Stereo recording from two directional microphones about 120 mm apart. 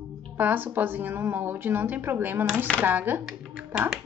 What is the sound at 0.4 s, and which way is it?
Speech, 15° right (ahead or behind).